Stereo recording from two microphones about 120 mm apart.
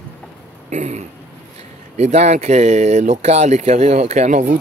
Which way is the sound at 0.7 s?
85° right.